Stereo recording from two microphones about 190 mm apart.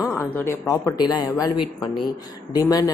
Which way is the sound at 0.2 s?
15° left (ahead or behind).